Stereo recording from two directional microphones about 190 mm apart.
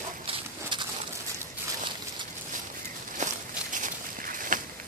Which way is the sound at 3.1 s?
40° right (ahead or behind).